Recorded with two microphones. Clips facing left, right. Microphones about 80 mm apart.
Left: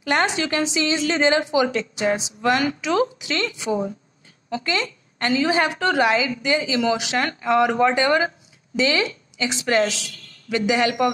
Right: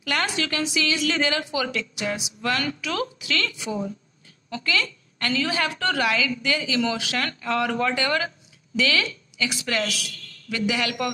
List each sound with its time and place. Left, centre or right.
0.0 s a woman's voice: left